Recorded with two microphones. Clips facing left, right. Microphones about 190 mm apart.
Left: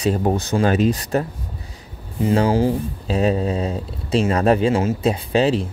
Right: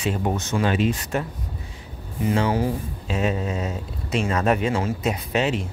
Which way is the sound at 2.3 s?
30° left (ahead or behind).